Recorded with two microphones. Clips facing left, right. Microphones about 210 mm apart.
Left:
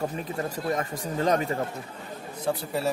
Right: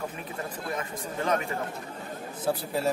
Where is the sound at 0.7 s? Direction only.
35° left (ahead or behind).